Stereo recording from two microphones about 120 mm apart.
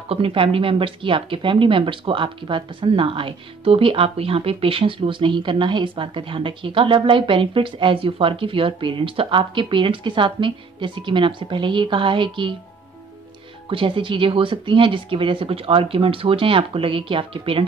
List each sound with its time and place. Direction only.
0.1 s speech: 50° right (ahead or behind)
13.7 s speech: 45° right (ahead or behind)